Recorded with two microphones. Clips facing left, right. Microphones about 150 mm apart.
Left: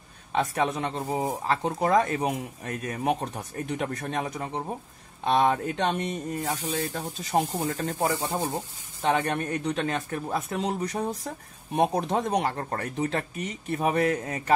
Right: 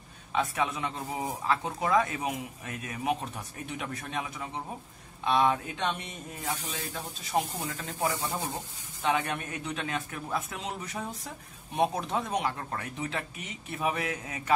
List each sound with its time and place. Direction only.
0.3 s speech: 40° left (ahead or behind)
0.9 s speech: 30° left (ahead or behind)